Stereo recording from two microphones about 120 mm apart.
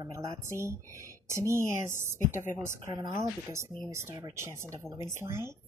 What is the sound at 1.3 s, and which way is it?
A woman's voice, 25° right (ahead or behind).